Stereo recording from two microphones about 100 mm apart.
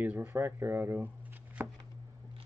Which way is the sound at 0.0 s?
20° right (ahead or behind).